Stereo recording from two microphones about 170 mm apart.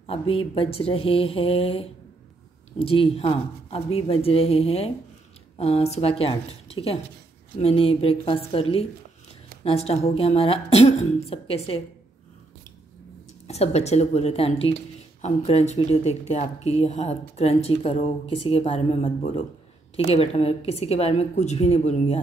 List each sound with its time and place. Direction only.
0.0 s speech: 35° left (ahead or behind)
13.5 s speech: 40° left (ahead or behind)